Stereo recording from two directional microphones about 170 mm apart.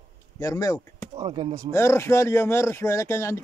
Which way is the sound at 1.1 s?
30° right (ahead or behind).